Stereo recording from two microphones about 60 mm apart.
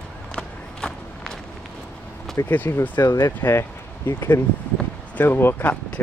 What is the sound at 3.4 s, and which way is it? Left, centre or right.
Speech, left.